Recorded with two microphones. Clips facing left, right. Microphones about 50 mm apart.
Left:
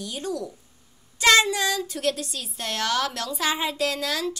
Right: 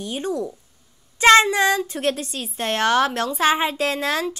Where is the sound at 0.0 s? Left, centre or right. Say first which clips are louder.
Right 5 dB; right.